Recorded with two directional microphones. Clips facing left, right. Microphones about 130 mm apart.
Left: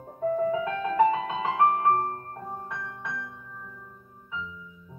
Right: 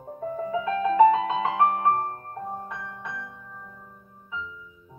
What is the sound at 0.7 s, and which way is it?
Music, 25° right (ahead or behind).